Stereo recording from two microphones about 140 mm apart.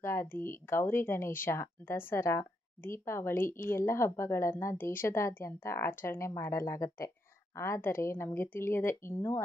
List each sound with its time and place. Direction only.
0.0 s speech: 20° left (ahead or behind)